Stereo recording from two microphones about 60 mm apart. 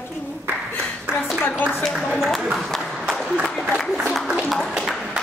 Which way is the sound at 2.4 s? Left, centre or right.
Centre.